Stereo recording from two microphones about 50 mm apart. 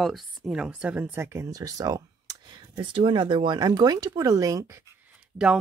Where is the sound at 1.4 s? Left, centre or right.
Right.